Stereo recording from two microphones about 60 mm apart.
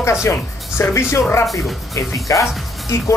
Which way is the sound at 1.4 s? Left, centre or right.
Centre.